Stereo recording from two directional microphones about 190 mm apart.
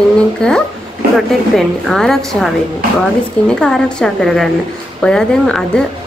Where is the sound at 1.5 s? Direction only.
Centre (ahead or behind).